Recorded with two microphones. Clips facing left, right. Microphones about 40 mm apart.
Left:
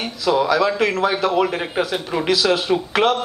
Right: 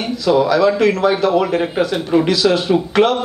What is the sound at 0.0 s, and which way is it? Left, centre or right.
Speech, centre.